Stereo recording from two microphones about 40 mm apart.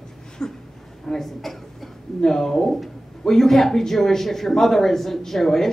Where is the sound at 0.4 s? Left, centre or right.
Left.